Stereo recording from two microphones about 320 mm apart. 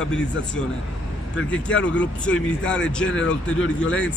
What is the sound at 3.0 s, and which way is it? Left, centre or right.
Speech, left.